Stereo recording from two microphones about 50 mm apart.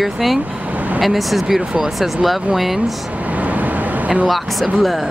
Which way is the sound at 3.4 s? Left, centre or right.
Right.